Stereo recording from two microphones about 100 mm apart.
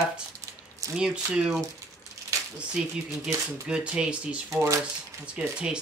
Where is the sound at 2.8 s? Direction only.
10° right (ahead or behind).